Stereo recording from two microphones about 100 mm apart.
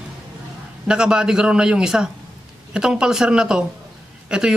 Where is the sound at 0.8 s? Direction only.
10° right (ahead or behind).